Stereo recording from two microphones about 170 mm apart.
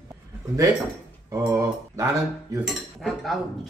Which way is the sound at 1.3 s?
15° right (ahead or behind).